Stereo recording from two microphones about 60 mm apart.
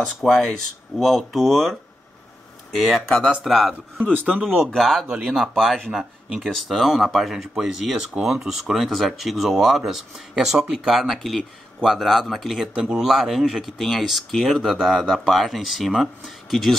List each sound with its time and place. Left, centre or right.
0.0 s speech: centre
4.3 s speech: right
4.7 s speech: centre
5.9 s speech: centre